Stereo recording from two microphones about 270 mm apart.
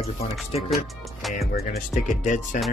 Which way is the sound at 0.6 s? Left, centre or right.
Centre.